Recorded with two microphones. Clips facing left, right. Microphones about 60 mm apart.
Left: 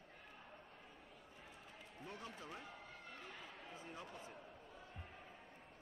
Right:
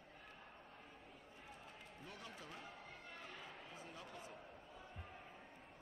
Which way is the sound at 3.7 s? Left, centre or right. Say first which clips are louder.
Left 3 dB; left.